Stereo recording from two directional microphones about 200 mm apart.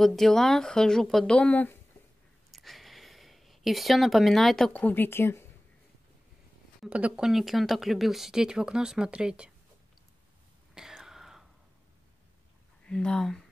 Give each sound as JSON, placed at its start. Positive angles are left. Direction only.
{"t": 0.0, "sound": "speech", "side_deg": 0}
{"t": 6.8, "sound": "speech", "side_deg": -5}
{"t": 10.7, "sound": "whispering", "side_deg": -5}
{"t": 12.8, "sound": "speech", "side_deg": 5}